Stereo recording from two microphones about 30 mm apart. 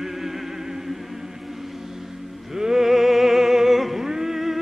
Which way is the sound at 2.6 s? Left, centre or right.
Centre.